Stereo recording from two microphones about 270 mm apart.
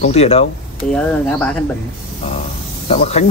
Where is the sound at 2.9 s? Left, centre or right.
Left.